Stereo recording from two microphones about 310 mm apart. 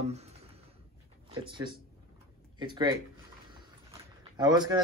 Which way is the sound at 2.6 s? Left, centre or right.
Centre.